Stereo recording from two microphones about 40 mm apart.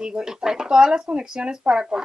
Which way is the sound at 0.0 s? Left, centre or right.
Centre.